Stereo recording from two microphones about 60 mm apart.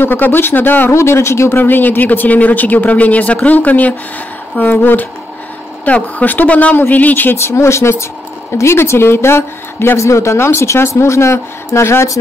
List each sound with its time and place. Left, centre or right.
0.0 s speech: left
0.9 s a woman's voice: left
1.6 s speech: left
7.3 s a woman's voice: left